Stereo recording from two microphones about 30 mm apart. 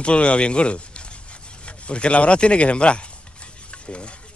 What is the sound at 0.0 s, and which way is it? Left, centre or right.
Speech, left.